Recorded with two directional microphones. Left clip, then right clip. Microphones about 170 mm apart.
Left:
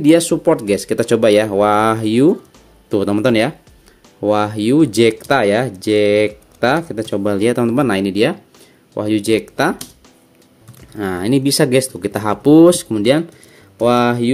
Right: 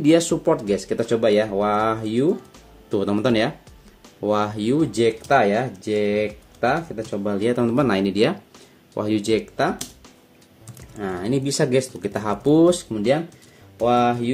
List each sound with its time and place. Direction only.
0.0 s speech: 30° left (ahead or behind); by 2.3 s 55° left (ahead or behind)
2.9 s speech: 35° left (ahead or behind); by 7.3 s 70° left (ahead or behind)
7.3 s speech: 45° left (ahead or behind)
11.0 s speech: 60° left (ahead or behind)
13.7 s speech: 80° left